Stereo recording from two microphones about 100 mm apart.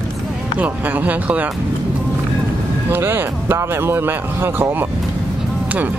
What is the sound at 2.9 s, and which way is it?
Speech, 20° right (ahead or behind).